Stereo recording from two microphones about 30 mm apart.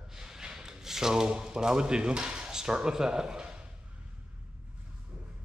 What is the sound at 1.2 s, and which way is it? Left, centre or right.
Speech, right.